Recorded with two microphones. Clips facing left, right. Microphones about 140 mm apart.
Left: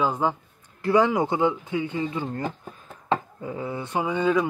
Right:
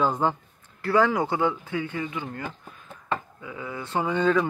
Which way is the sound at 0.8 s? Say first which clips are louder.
Left 2 dB; 20° left (ahead or behind).